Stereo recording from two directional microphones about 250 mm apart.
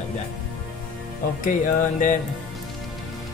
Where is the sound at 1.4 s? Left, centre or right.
Left.